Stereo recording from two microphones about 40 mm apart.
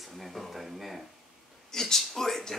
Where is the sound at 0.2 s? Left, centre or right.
Centre.